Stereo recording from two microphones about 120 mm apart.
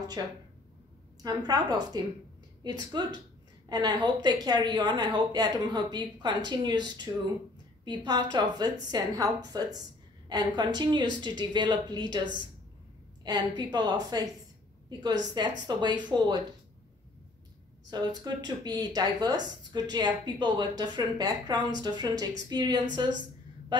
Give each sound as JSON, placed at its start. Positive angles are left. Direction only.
{"t": 0.2, "sound": "speech", "side_deg": -30}
{"t": 17.8, "sound": "speech", "side_deg": -35}